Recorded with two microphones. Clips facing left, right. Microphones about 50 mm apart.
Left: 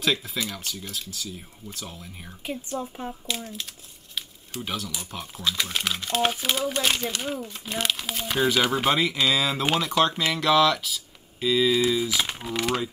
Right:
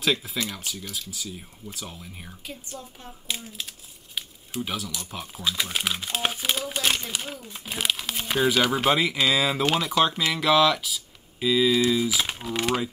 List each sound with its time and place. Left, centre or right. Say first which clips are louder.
0.0 s speech: even; centre
2.8 s speech: left 9 dB; left
3.3 s speech: left 2 dB; centre